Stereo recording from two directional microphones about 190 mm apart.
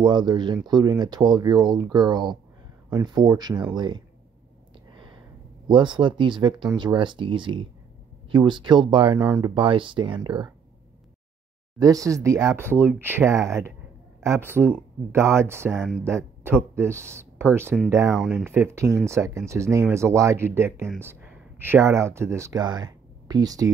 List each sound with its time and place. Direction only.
0.0 s speech: 25° right (ahead or behind)
5.7 s speech: 25° right (ahead or behind)
11.8 s speech: 15° right (ahead or behind)
15.7 s speech: centre (ahead or behind)
16.0 s speech: 15° right (ahead or behind)
18.1 s speech: 5° right (ahead or behind); by 23.7 s 20° right (ahead or behind)